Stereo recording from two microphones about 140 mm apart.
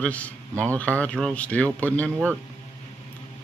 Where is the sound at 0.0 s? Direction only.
10° left (ahead or behind).